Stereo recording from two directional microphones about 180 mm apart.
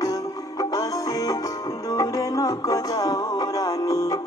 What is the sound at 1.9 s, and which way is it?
Music, 20° left (ahead or behind).